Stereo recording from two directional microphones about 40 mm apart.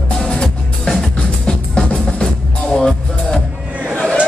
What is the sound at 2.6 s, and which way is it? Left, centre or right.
Music, centre.